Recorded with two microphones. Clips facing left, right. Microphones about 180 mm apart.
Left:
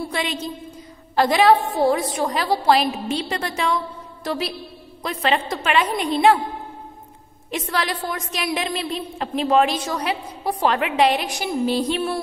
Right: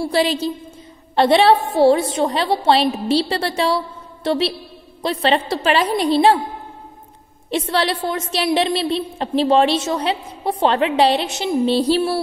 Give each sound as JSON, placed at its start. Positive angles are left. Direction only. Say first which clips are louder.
{"t": 0.1, "sound": "a woman's voice", "louder": "right 8 dB", "side_deg": -35}
{"t": 7.5, "sound": "a woman's voice", "louder": "right 5 dB", "side_deg": -30}